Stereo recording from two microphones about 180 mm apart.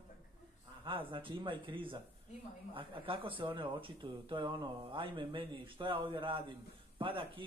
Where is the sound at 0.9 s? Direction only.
30° right (ahead or behind).